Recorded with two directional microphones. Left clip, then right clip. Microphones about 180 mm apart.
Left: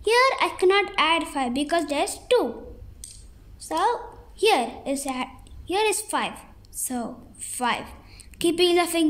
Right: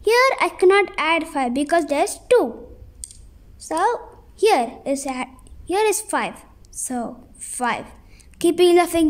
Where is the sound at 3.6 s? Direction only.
30° right (ahead or behind).